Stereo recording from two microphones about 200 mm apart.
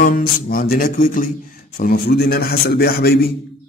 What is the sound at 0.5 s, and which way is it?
Speech, 45° left (ahead or behind).